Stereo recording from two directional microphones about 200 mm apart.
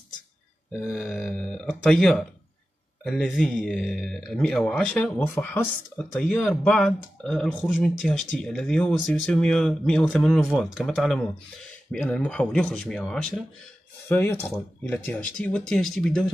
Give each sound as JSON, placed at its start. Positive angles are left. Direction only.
{"t": 0.7, "sound": "speech", "side_deg": -5}